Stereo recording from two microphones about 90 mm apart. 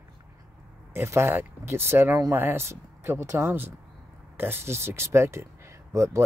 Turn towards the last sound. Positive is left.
turn(degrees=-30)  # may be behind; listen again after turning